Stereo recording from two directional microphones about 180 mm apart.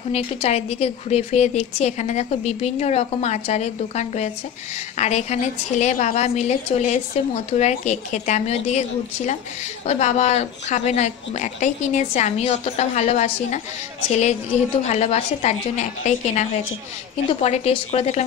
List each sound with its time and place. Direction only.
0.1 s a woman's voice: 35° left (ahead or behind)